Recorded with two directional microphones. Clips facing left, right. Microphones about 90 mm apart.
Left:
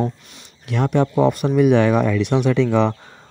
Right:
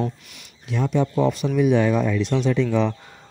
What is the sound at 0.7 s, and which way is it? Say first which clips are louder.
Speech: left 3 dB; 65° left (ahead or behind).